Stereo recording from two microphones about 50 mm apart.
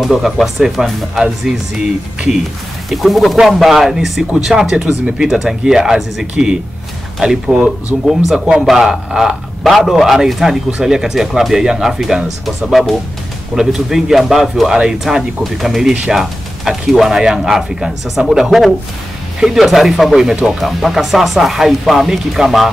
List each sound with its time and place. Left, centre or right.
0.0 s a man's voice: centre
2.9 s a man's voice: centre
8.6 s a man's voice: centre